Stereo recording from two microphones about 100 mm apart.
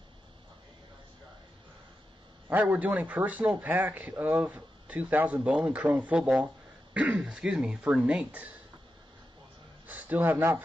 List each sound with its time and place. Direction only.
2.5 s speech: 15° right (ahead or behind)
9.8 s a man's voice: 15° right (ahead or behind)